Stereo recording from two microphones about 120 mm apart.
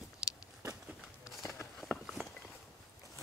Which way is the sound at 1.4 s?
25° left (ahead or behind).